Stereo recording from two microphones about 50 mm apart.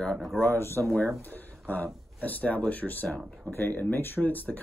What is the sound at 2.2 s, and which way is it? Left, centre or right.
Speech, left.